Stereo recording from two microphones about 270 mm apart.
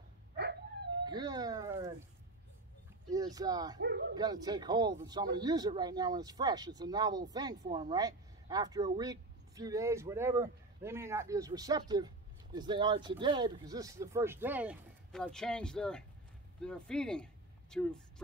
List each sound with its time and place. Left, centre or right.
1.0 s speech: centre
3.1 s speech: centre
3.8 s speech: right
4.2 s speech: centre
7.6 s speech: right
7.9 s speech: centre